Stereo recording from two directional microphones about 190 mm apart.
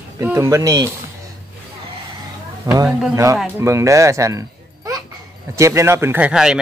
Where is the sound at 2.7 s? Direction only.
20° right (ahead or behind).